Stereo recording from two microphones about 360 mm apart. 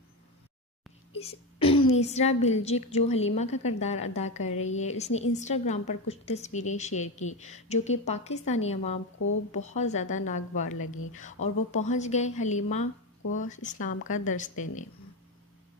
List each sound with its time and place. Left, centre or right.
1.1 s a woman's voice: centre